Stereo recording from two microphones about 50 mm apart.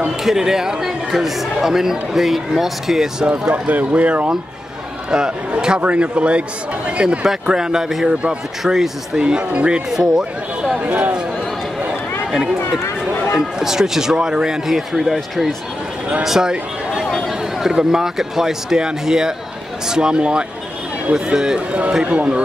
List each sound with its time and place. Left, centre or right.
0.2 s speech: centre
3.3 s speech: right
5.1 s a man's voice: centre
5.8 s a man's voice: right
8.7 s a man's voice: centre
9.2 s a man's voice: right
10.8 s speech: right
12.3 s speech: centre
13.6 s a man's voice: centre
14.9 s speech: centre
16.3 s a man's voice: centre
17.0 s a sound: centre
17.6 s a man's voice: centre
22.0 s speech: right